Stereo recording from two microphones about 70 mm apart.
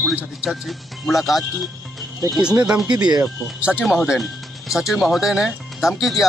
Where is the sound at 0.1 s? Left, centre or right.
Centre.